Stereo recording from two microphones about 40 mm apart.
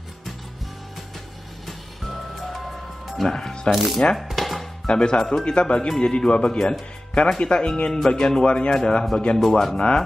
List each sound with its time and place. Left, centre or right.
2.5 s music: centre
3.3 s speech: centre
3.7 s chopping: centre
4.2 s music: centre
4.8 s speech: left
9.4 s speech: centre
9.8 s speech: left